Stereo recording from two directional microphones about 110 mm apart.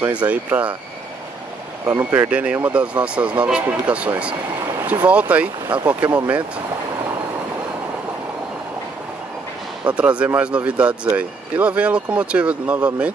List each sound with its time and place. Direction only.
0.0 s speech: 15° right (ahead or behind)
1.9 s speech: 25° right (ahead or behind)
2.2 s speech: 10° right (ahead or behind)
9.9 s speech: 10° right (ahead or behind)